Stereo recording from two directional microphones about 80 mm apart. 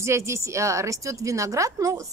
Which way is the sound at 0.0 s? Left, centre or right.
Right.